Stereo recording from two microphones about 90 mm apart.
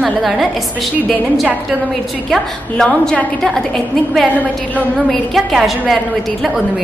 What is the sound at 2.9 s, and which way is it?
A woman's voice, 15° left (ahead or behind).